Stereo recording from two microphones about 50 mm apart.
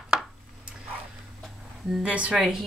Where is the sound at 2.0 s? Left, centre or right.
Right.